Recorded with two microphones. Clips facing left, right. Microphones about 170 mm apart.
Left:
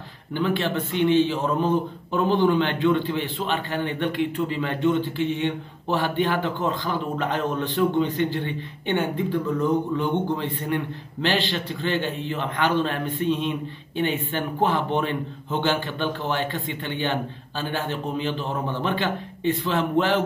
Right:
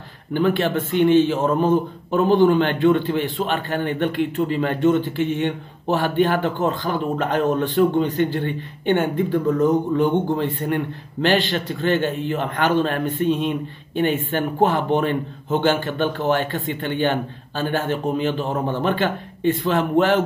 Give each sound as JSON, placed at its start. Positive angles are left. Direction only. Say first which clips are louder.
{"t": 0.3, "sound": "a man's voice", "louder": "right 5 dB", "side_deg": -50}